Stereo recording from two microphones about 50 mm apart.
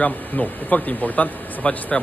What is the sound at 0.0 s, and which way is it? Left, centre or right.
Speech, left.